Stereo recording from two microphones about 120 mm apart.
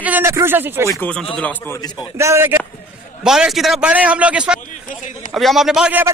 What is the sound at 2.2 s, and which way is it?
Speech, 20° right (ahead or behind).